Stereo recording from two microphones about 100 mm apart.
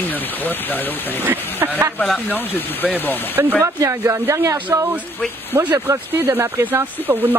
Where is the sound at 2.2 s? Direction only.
20° left (ahead or behind).